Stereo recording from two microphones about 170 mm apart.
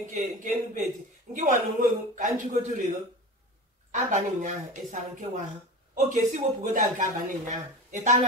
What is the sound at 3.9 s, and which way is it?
Speech, 45° right (ahead or behind).